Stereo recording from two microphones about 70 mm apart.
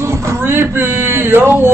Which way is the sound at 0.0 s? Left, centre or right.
Right.